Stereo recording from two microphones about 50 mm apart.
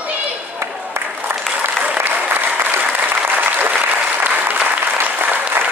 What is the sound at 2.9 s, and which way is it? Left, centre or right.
Applause, right.